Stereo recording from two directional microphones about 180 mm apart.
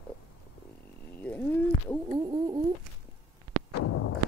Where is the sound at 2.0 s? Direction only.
25° right (ahead or behind).